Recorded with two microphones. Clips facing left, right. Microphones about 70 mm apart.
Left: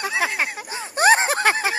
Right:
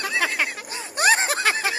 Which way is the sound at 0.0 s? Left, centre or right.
Centre.